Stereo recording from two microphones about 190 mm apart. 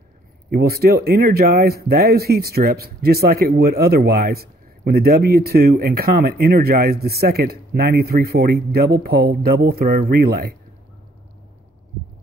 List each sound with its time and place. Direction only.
0.5 s speech: 55° right (ahead or behind)